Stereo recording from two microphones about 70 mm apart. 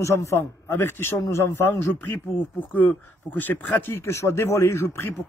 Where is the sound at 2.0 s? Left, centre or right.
Left.